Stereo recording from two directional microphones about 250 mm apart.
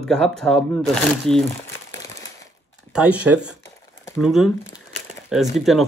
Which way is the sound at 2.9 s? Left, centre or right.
Centre.